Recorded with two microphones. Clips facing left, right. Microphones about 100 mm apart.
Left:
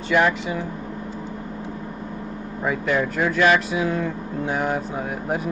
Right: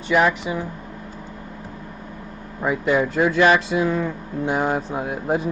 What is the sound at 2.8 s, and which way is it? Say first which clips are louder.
Speech: right 4 dB; 15° right (ahead or behind).